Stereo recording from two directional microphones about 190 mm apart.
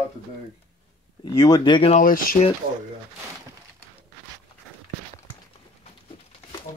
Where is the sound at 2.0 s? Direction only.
45° left (ahead or behind).